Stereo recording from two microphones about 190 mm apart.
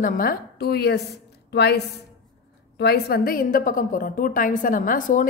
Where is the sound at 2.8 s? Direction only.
55° left (ahead or behind).